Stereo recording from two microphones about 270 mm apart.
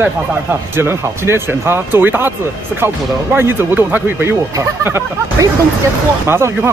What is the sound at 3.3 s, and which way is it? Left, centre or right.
Speech, centre.